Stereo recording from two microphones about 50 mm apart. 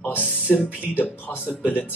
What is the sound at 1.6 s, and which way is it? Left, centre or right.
Speech, left.